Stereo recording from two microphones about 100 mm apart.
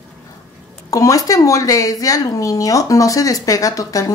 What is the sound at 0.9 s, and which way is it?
A woman's voice, 35° left (ahead or behind).